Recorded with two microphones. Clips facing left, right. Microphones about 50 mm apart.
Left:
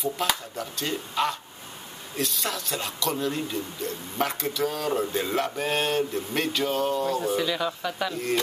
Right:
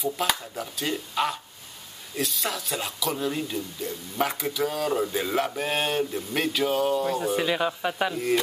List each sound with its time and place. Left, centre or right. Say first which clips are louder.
0.0 s a man's voice: even; centre
7.3 s speech: right 1 dB; right
8.1 s a man's voice: right 3 dB; centre